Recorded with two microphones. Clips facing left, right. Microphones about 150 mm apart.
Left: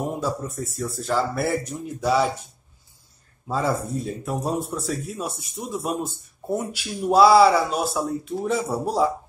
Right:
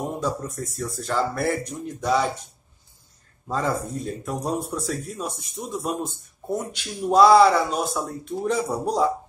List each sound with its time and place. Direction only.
0.2 s speech: 5° left (ahead or behind)
3.4 s speech: 5° left (ahead or behind)